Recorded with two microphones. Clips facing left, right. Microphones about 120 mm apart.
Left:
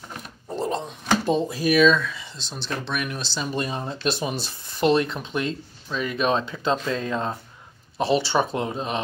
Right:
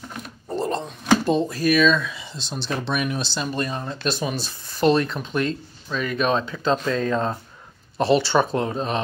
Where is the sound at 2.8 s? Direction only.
20° right (ahead or behind).